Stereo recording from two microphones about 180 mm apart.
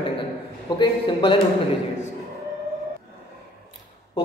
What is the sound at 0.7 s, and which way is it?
Speech, 25° left (ahead or behind).